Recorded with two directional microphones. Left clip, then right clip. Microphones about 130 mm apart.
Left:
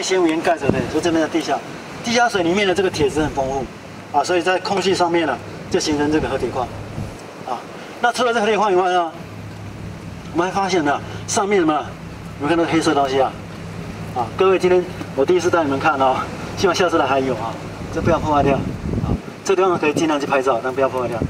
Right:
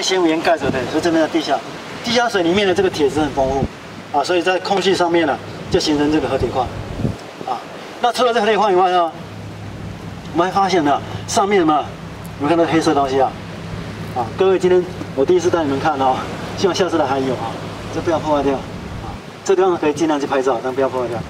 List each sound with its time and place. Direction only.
0.1 s speech: 10° right (ahead or behind)
1.0 s speech: 5° left (ahead or behind)
8.0 s speech: centre (ahead or behind)
10.3 s speech: centre (ahead or behind)
14.4 s speech: 10° left (ahead or behind)